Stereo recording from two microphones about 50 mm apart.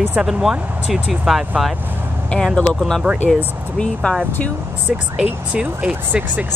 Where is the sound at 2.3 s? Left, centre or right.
Left.